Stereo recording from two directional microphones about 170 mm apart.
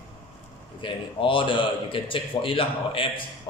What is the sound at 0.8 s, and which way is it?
A man's voice, 30° left (ahead or behind).